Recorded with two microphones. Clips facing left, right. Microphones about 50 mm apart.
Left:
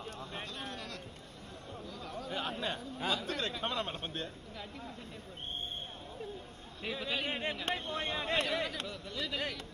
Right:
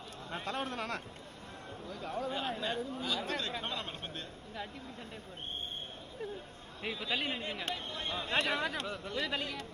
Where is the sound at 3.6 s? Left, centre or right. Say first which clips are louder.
Left 3 dB; left.